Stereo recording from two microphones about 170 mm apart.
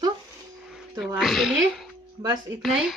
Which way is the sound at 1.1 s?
Centre (ahead or behind).